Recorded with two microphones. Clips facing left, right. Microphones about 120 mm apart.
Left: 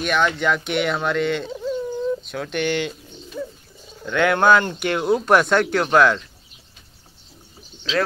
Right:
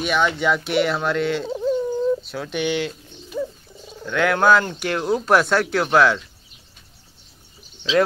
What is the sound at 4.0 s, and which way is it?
Speech, centre (ahead or behind).